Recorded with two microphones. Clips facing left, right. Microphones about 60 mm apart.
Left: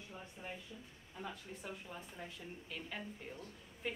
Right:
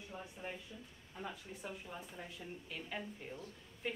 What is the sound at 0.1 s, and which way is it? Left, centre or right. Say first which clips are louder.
Speech: right 2 dB; centre.